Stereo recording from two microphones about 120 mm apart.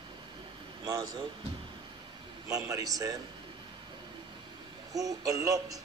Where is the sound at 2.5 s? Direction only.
30° right (ahead or behind).